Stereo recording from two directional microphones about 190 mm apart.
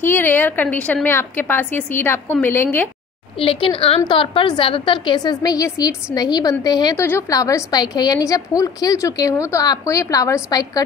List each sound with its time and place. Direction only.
0.0 s a woman's voice: 10° left (ahead or behind)
3.3 s a woman's voice: 30° left (ahead or behind)